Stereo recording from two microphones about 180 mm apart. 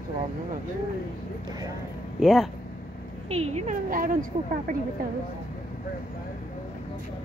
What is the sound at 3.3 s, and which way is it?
Speech, 35° right (ahead or behind).